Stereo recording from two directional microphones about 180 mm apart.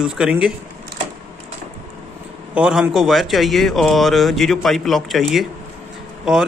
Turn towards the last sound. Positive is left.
turn(degrees=-5)  # may be behind; listen again after turning